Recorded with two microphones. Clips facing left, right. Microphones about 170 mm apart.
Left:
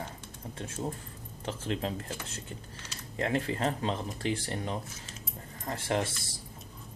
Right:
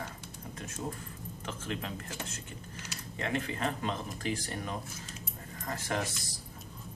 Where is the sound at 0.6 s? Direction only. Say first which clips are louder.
Left 3 dB; 30° left (ahead or behind).